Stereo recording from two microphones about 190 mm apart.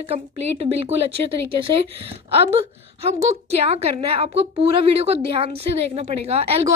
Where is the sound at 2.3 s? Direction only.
30° right (ahead or behind).